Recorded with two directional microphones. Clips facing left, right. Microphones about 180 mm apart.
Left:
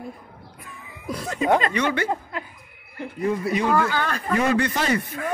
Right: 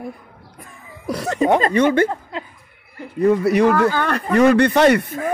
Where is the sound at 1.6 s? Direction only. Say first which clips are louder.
Right 8 dB; 45° right (ahead or behind).